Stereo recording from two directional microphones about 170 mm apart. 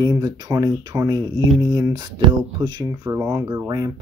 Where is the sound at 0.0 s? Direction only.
20° right (ahead or behind).